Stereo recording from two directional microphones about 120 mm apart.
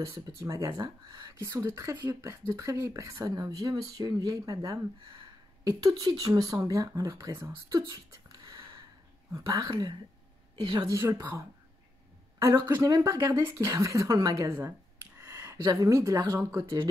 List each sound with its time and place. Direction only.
0.0 s speech: 25° right (ahead or behind)
1.3 s speech: 25° right (ahead or behind)
3.2 s a woman's voice: 35° right (ahead or behind)